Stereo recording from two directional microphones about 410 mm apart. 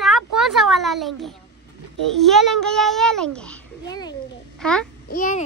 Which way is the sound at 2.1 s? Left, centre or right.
Centre.